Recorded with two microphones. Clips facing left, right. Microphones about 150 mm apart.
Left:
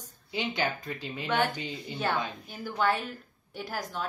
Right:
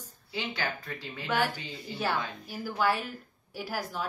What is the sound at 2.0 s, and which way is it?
Speech, 5° right (ahead or behind).